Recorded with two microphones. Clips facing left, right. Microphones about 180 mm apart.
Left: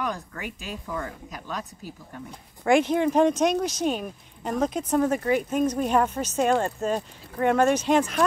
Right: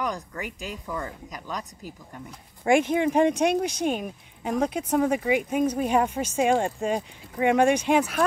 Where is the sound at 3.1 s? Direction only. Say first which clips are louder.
Even; 10° right (ahead or behind).